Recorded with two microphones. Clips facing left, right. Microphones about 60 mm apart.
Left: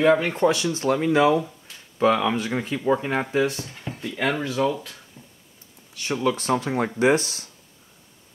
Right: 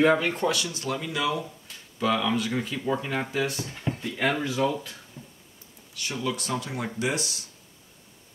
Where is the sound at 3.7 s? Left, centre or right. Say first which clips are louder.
Right 4 dB; centre.